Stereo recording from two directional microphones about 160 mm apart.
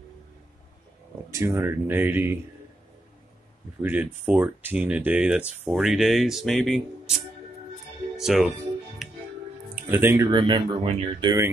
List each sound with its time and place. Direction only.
1.3 s speech: 15° right (ahead or behind)
3.8 s speech: 10° right (ahead or behind)
8.2 s speech: 5° right (ahead or behind)
9.0 s music: centre (ahead or behind)
9.8 s speech: 15° right (ahead or behind)
10.4 s speech: 30° right (ahead or behind)